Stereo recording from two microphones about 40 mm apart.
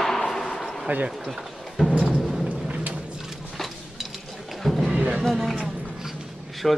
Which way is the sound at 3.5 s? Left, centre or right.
Centre.